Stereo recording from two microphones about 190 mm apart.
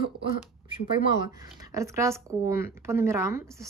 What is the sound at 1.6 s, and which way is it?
Speech, 15° right (ahead or behind).